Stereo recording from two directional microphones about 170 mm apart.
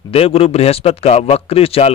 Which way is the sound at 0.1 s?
35° left (ahead or behind).